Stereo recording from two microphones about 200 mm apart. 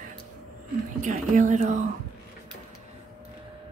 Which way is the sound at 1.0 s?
40° right (ahead or behind).